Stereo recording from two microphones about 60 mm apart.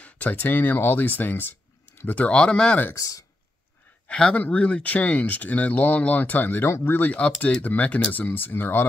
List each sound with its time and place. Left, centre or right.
0.0 s speech: left
2.9 s speech: left
4.1 s speech: centre; by 7.1 s left
7.1 s speech: left